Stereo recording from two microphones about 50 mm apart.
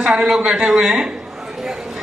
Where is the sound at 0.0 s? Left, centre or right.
Centre.